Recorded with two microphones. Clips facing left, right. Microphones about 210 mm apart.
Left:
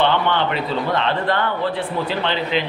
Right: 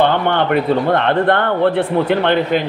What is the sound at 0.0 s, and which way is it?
Speech, 50° right (ahead or behind).